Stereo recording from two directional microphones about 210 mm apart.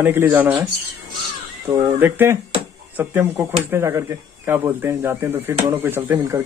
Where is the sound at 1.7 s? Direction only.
15° right (ahead or behind).